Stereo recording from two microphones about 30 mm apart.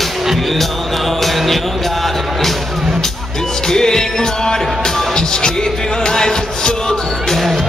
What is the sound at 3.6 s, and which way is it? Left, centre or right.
Music, centre.